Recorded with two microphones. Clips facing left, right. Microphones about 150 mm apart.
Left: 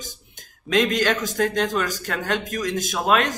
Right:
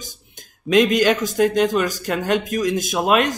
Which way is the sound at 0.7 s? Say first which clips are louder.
Right 5 dB; 15° right (ahead or behind).